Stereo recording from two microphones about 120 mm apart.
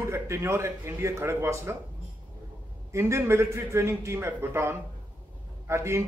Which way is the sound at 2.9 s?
25° right (ahead or behind).